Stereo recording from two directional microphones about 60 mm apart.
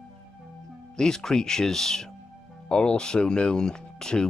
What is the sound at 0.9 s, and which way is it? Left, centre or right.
Speech, centre.